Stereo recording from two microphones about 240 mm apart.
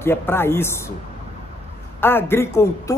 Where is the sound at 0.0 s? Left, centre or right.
Centre.